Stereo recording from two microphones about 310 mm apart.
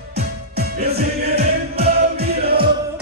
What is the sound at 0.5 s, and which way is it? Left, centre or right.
Music, right.